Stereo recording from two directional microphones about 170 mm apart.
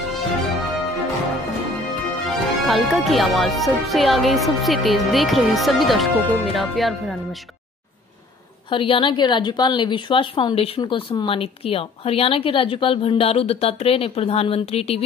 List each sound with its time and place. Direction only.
2.6 s speech: centre (ahead or behind)
8.6 s a woman's voice: 30° left (ahead or behind)